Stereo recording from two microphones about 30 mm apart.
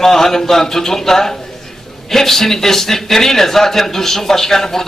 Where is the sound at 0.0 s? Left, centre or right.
Centre.